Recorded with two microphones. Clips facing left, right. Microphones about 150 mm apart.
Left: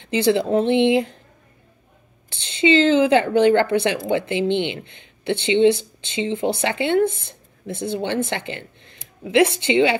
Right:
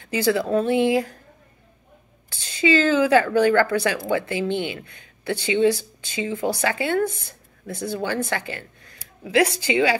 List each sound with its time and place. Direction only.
0.0 s speech: 25° left (ahead or behind)
2.2 s a woman's voice: 25° left (ahead or behind)